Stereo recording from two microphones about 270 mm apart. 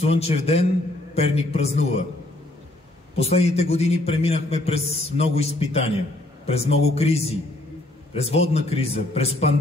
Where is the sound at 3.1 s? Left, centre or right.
Left.